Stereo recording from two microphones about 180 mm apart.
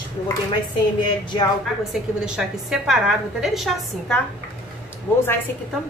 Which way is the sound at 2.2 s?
5° right (ahead or behind).